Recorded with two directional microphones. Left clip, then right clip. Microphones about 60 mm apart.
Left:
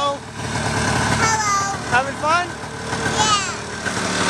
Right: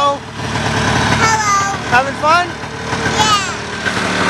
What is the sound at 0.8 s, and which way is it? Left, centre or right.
Vehicle, centre.